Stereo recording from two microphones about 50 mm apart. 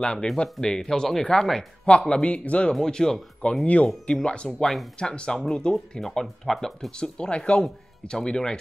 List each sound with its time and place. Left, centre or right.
0.0 s speech: centre
1.9 s speech: left
2.7 s speech: centre
3.6 s speech: left; by 6.9 s centre
7.0 s speech: centre